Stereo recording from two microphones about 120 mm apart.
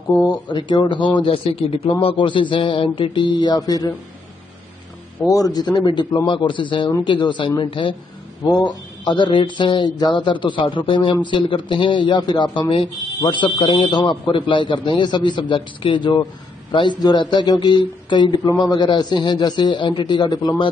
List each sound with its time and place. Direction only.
0.5 s speech: 40° left (ahead or behind)
5.2 s speech: 30° left (ahead or behind)